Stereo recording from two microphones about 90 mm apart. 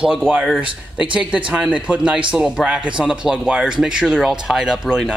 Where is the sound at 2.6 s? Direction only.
10° right (ahead or behind).